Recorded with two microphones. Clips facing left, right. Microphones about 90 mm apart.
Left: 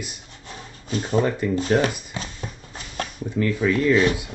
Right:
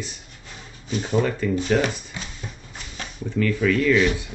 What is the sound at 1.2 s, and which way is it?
Speech, 20° left (ahead or behind).